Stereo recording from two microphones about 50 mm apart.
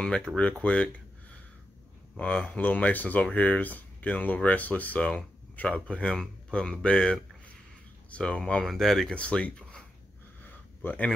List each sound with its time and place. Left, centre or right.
0.4 s speech: left
2.1 s speech: left
8.6 s speech: centre
9.1 s speech: left
10.4 s a sound: left